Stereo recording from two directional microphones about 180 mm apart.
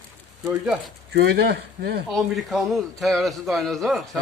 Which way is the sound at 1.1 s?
65° right (ahead or behind).